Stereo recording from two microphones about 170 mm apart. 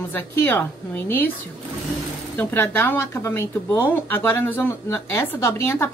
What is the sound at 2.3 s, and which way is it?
Speech, 10° left (ahead or behind).